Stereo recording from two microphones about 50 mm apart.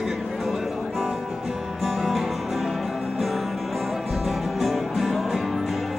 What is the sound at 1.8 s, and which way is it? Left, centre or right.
Music, centre.